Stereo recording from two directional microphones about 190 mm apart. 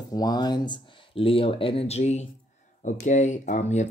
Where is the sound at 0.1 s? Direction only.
20° left (ahead or behind).